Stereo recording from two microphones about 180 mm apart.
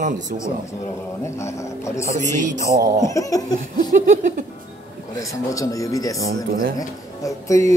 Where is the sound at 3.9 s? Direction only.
45° right (ahead or behind).